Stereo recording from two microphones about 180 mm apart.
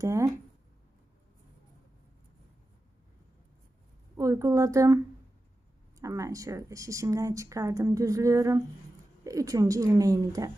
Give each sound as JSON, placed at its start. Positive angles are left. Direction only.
{"t": 0.0, "sound": "speech", "side_deg": -15}
{"t": 4.2, "sound": "speech", "side_deg": -15}